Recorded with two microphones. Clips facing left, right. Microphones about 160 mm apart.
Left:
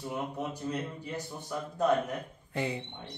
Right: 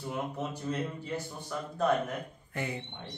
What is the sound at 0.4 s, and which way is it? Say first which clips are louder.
Speech: even; 15° left (ahead or behind).